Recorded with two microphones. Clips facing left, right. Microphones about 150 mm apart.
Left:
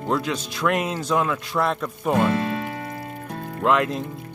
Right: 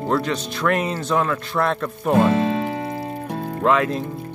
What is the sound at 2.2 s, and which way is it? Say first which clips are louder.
Music: right 4 dB; 25° right (ahead or behind).